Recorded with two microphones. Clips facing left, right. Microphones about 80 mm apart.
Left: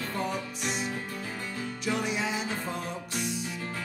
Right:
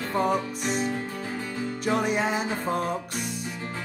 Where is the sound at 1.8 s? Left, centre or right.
Right.